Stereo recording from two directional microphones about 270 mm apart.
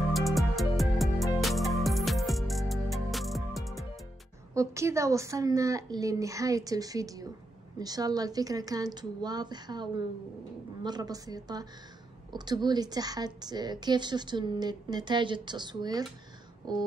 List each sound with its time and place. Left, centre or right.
0.1 s music: centre
4.6 s a woman's voice: centre